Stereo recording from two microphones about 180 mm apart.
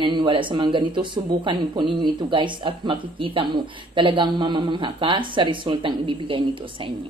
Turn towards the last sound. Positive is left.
turn(degrees=-25)  # may be behind; listen again after turning